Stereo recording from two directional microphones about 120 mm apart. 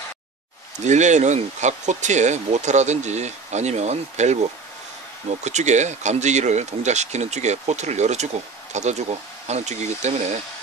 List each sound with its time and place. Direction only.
0.7 s speech: 75° right (ahead or behind)